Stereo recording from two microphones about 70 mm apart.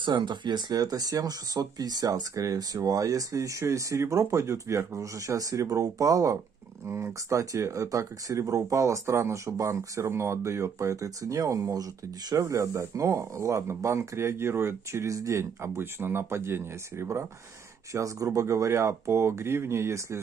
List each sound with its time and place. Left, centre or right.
0.0 s speech: right
12.4 s speech: right
17.9 s speech: right